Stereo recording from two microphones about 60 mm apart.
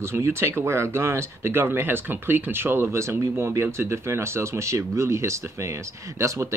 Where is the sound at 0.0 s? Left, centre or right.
Right.